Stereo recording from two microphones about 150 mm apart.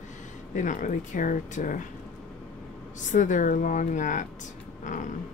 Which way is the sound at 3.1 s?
60° left (ahead or behind).